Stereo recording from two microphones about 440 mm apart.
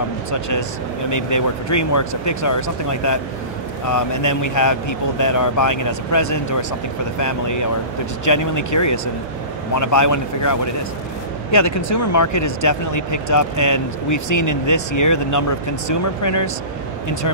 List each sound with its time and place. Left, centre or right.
0.3 s speech: left